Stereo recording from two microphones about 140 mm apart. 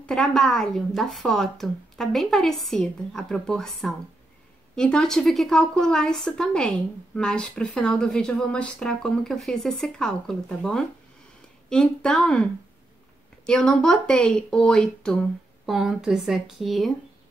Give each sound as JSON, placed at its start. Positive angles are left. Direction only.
{"t": 0.0, "sound": "a woman's voice", "side_deg": 5}
{"t": 13.5, "sound": "a woman's voice", "side_deg": 5}